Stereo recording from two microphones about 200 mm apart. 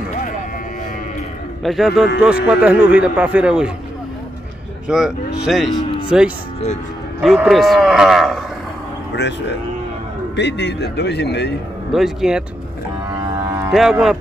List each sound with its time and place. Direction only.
1.6 s cattle: centre (ahead or behind)
2.4 s speech: 5° right (ahead or behind)
4.8 s cattle: 5° right (ahead or behind)
9.1 s speech: 60° left (ahead or behind)
11.9 s cattle: centre (ahead or behind)
13.7 s cattle: centre (ahead or behind)